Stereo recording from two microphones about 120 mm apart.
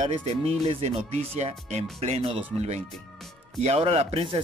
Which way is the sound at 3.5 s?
60° right (ahead or behind).